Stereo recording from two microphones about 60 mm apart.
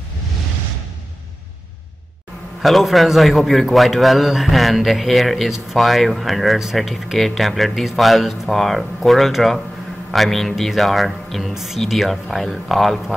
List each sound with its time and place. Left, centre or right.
2.6 s speech: centre